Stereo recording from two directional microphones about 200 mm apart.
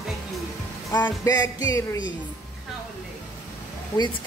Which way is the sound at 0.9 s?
15° left (ahead or behind).